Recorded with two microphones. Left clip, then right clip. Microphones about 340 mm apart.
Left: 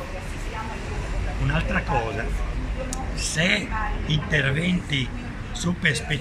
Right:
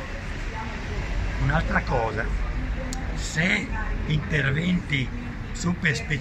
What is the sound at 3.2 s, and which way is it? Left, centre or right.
A man's voice, centre.